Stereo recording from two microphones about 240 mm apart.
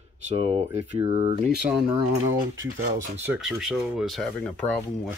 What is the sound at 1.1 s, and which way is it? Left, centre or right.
Speech, right.